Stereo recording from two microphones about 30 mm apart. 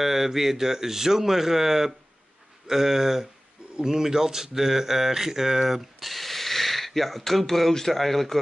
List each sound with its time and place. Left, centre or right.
0.0 s speech: centre
5.9 s a sound: centre
7.7 s speech: centre